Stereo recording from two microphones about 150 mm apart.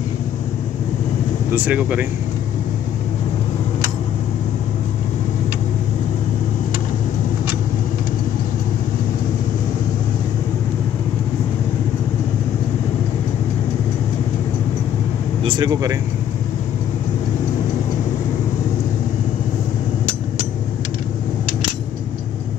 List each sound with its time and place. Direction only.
1.5 s speech: 10° right (ahead or behind)
15.4 s speech: 30° right (ahead or behind)